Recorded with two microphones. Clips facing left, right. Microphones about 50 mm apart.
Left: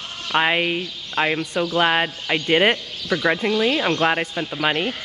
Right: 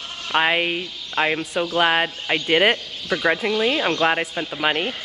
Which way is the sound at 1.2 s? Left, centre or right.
Centre.